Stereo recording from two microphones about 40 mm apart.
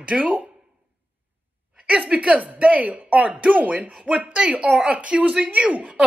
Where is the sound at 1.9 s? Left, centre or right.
Right.